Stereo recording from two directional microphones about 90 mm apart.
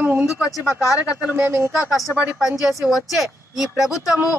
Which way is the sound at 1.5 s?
25° right (ahead or behind).